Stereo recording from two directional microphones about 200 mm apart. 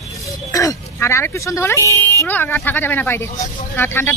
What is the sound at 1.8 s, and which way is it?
Speech, 15° right (ahead or behind).